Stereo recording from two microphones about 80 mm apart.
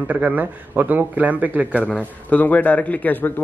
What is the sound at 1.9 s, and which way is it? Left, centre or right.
A man's voice, centre.